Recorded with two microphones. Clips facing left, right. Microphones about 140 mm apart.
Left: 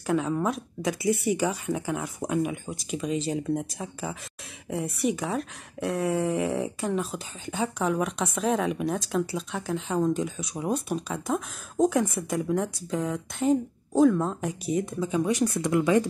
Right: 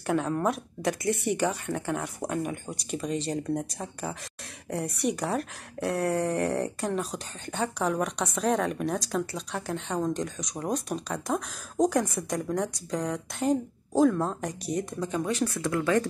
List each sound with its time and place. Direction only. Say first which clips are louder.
0.0 s speech: left 1 dB; centre (ahead or behind)
15.3 s speech: left 4 dB; 20° left (ahead or behind)